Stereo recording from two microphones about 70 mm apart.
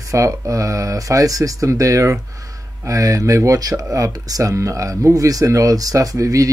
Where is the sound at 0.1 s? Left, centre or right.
Right.